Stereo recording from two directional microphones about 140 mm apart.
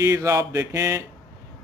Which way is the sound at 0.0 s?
20° right (ahead or behind).